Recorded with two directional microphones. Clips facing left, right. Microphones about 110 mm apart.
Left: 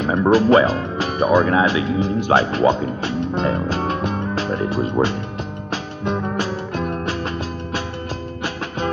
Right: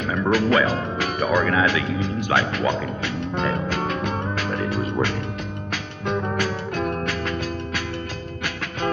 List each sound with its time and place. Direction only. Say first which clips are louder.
0.0 s speech: left 6 dB; 30° left (ahead or behind)
5.7 s music: left 3 dB; 20° left (ahead or behind)